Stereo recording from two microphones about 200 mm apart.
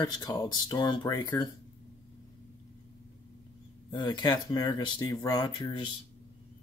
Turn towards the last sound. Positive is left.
turn(degrees=20)  # may be behind; listen again after turning